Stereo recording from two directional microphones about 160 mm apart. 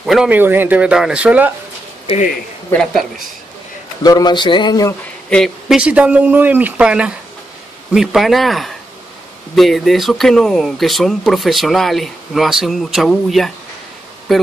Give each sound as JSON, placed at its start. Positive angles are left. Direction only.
{"t": 0.0, "sound": "speech", "side_deg": -5}
{"t": 2.7, "sound": "speech", "side_deg": 5}
{"t": 4.0, "sound": "speech", "side_deg": 25}
{"t": 5.3, "sound": "speech", "side_deg": 0}